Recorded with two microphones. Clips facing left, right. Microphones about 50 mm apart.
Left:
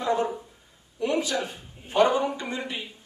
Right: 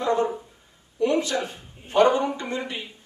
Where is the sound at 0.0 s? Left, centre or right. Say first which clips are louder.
Right 2 dB; centre.